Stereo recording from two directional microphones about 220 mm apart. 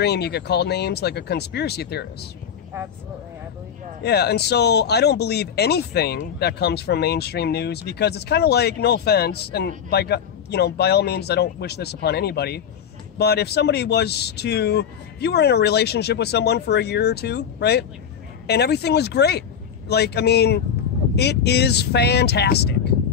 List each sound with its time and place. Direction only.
0.0 s speech: 50° left (ahead or behind)
4.0 s speech: 50° left (ahead or behind)